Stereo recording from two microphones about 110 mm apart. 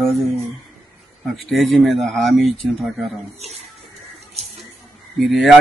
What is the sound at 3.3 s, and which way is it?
Speech, 75° right (ahead or behind).